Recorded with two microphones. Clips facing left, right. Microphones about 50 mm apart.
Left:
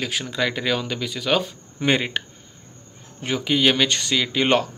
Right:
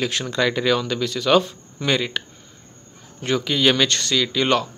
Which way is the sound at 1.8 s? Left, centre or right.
Left.